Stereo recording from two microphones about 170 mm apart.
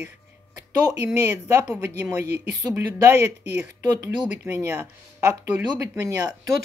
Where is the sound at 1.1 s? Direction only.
15° right (ahead or behind).